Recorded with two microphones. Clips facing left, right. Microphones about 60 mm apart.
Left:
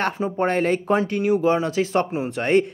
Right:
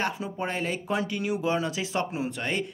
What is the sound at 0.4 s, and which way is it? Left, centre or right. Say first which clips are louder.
Speech: left 10 dB; left.